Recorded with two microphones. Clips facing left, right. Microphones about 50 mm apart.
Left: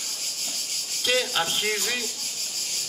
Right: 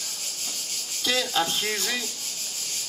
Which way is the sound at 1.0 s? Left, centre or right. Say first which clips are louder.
Even; left.